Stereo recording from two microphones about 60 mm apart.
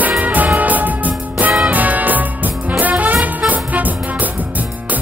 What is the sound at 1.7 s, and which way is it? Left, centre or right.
Brass instrument, right.